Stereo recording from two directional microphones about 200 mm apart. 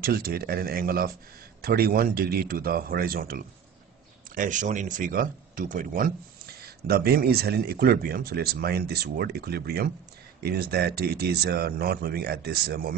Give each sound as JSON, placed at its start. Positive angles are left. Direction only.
{"t": 0.0, "sound": "speech", "side_deg": -50}